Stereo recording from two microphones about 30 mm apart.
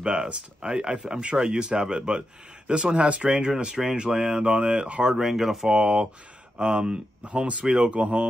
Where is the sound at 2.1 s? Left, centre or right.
Right.